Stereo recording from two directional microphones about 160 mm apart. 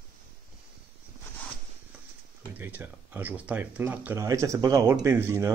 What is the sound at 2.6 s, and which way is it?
Speech, 10° right (ahead or behind).